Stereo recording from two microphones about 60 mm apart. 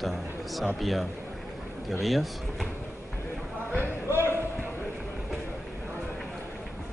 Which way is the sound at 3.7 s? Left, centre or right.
Right.